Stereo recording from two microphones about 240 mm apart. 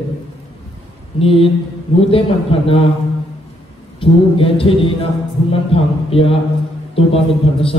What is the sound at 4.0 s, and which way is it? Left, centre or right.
A man's voice, left.